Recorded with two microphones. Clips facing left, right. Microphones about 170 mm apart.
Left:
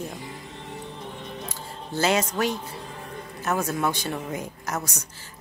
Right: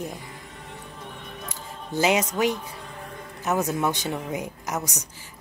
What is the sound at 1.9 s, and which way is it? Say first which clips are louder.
Speech: right 1 dB; 15° right (ahead or behind).